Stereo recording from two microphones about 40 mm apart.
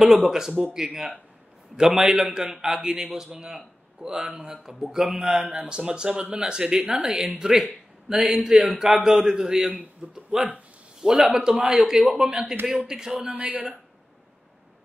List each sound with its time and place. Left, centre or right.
0.0 s a man's voice: centre; by 7.1 s right
7.2 s a man's voice: centre
10.0 s speech: right
11.0 s a man's voice: centre
13.3 s a man's voice: right